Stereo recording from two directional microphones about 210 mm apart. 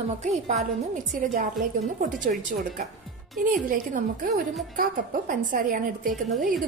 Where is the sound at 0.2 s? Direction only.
35° right (ahead or behind).